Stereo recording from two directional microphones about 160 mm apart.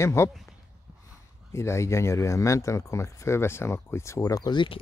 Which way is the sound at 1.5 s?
15° left (ahead or behind).